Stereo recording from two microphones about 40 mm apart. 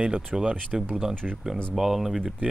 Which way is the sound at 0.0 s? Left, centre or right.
Centre.